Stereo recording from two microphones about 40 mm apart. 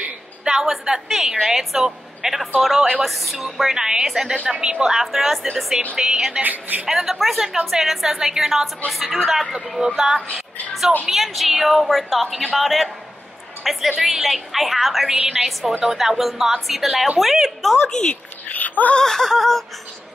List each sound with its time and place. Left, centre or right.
0.5 s a woman's voice: centre
4.5 s a woman's voice: right
4.8 s a woman's voice: centre
5.9 s a woman's voice: centre
6.4 s speech: right
6.9 s a woman's voice: centre
17.8 s a sound: centre
18.5 s a sound: left
18.9 s a sound: centre